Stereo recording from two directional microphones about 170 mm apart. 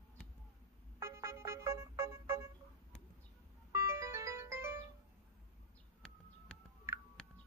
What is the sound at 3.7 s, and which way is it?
Music, 15° right (ahead or behind).